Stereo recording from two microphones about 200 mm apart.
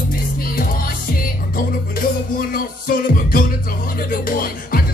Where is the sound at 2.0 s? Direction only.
45° left (ahead or behind).